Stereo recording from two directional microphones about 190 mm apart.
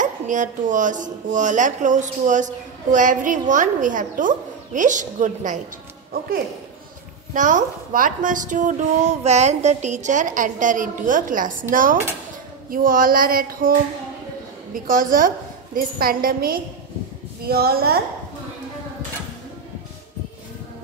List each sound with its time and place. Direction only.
0.0 s a woman's voice: 40° right (ahead or behind)
7.3 s speech: 40° right (ahead or behind)
14.9 s a woman's voice: 45° right (ahead or behind)